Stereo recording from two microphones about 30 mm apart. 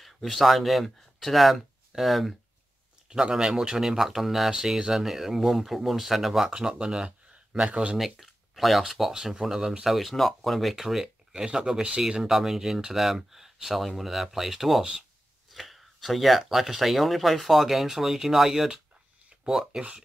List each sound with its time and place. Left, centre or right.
0.0 s speech: centre
3.1 s speech: right; by 4.5 s centre
4.5 s speech: right
6.5 s speech: right
8.0 s speech: centre
9.1 s speech: centre
9.8 s speech: centre
11.3 s speech: right
12.3 s speech: centre